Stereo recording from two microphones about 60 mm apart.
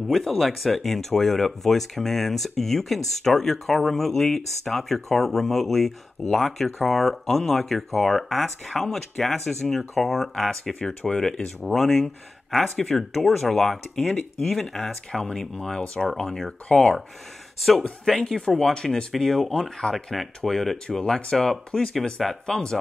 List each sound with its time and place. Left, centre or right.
0.1 s speech: centre
10.8 s speech: centre
18.0 s speech: centre